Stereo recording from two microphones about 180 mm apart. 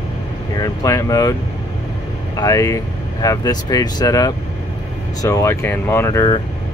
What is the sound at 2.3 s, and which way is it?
Speech, 20° left (ahead or behind).